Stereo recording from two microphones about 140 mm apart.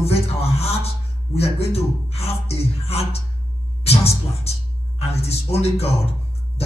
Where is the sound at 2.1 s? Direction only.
45° left (ahead or behind).